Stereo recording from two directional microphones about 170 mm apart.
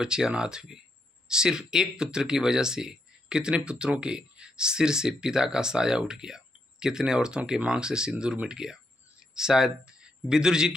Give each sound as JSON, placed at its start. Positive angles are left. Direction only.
{"t": 0.0, "sound": "speech", "side_deg": -5}